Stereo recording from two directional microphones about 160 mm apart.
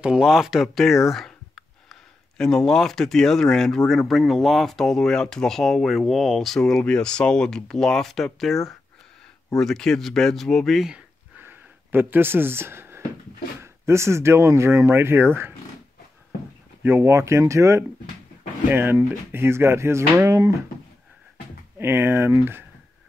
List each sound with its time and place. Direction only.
0.0 s speech: 5° right (ahead or behind)
11.3 s a sound: 15° right (ahead or behind)
13.6 s speech: 15° right (ahead or behind)
16.8 s speech: 15° right (ahead or behind)
21.7 s speech: 15° right (ahead or behind)